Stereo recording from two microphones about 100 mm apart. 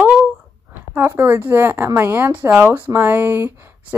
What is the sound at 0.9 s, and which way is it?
A woman's voice, 25° right (ahead or behind).